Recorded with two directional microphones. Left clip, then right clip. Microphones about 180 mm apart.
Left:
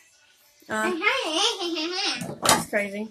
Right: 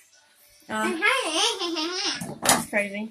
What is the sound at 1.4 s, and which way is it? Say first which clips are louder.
Baby laughter: even; centre (ahead or behind).